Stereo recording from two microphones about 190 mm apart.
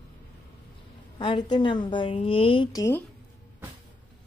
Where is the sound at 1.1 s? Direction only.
25° left (ahead or behind).